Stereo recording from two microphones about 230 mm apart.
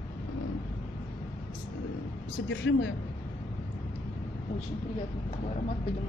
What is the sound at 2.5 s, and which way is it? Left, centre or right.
Speech, left.